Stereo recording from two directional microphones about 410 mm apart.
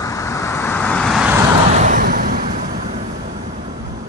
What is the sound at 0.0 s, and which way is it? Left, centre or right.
Vehicle, centre.